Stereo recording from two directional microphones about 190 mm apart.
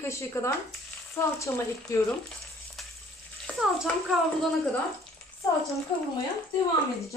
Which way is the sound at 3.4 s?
Centre (ahead or behind).